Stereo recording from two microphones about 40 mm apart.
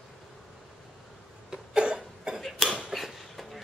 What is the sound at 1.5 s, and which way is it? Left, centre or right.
Cough, centre.